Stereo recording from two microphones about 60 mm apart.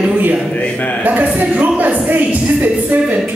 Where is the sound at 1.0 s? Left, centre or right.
Right.